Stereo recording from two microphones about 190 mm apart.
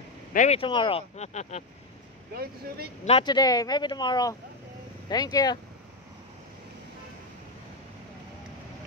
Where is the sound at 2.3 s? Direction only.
55° right (ahead or behind).